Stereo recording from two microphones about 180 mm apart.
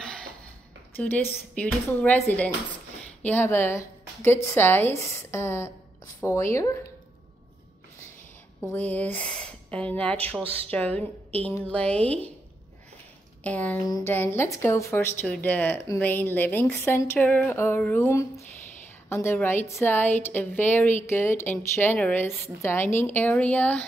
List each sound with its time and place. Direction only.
0.9 s speech: 10° left (ahead or behind)
8.7 s speech: 10° left (ahead or behind)
10.4 s a woman's voice: 30° right (ahead or behind)
10.7 s speech: 10° left (ahead or behind)
13.4 s speech: 10° left (ahead or behind)